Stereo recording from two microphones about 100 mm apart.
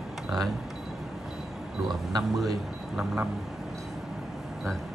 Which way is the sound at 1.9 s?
45° right (ahead or behind).